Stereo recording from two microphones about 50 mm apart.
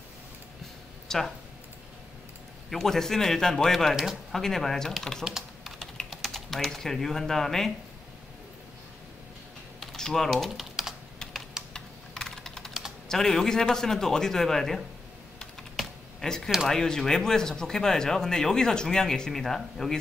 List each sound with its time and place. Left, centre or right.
1.0 s a sound: centre
2.7 s speech: centre
3.9 s speech: centre
4.3 s speech: centre
5.2 s typing: centre
6.0 s speech: centre
9.9 s speech: centre
10.5 s typing: centre
11.7 s computer keyboard: centre
13.1 s speech: centre
15.7 s typing: centre
16.3 s speech: centre